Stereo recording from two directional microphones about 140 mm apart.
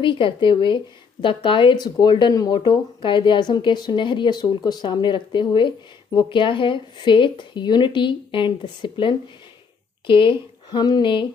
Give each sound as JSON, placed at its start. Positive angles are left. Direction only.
{"t": 0.0, "sound": "speech", "side_deg": 35}